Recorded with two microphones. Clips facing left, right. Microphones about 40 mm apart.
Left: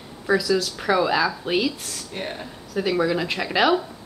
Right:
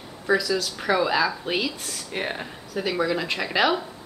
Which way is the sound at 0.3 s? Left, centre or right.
Centre.